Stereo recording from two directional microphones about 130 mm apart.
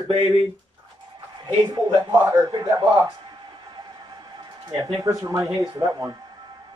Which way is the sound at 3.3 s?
35° right (ahead or behind).